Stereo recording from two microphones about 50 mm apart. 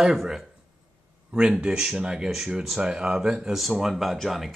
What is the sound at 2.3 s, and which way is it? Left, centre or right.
Speech, centre.